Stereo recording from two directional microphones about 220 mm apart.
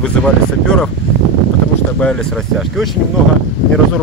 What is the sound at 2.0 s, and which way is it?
Speech, 5° left (ahead or behind).